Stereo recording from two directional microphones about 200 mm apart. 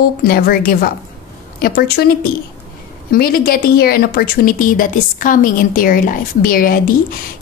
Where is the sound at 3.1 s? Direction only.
45° left (ahead or behind).